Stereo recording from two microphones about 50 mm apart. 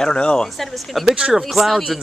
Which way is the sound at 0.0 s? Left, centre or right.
Centre.